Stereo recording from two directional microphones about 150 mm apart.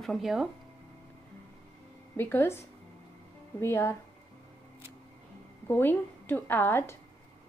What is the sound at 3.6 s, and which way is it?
Speech, 15° left (ahead or behind).